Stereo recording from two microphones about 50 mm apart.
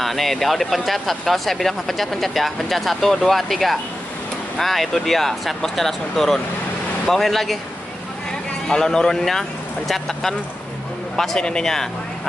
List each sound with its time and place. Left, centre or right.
0.0 s speech: centre
8.6 s speech: centre
11.1 s speech: centre